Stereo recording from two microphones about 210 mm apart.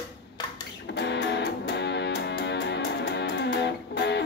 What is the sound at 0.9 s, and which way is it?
Music, 55° left (ahead or behind).